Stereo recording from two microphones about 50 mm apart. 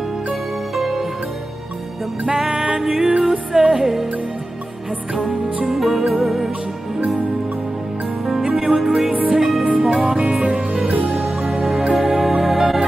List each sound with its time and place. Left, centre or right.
0.7 s music: centre
2.2 s music: centre
5.7 s music: centre
8.5 s music: centre
10.4 s music: right
11.1 s music: centre